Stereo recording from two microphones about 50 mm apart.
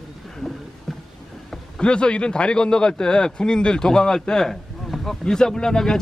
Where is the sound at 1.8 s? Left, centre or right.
Centre.